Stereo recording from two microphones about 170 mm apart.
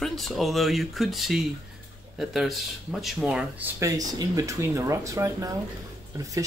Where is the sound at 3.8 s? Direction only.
20° right (ahead or behind).